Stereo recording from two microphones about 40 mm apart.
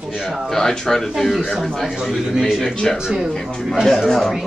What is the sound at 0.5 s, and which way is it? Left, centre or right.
Speech, centre.